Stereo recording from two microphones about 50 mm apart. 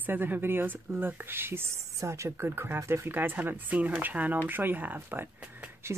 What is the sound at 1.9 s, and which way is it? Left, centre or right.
Speech, right.